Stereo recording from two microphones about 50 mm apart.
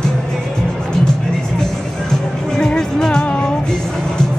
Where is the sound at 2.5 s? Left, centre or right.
Centre.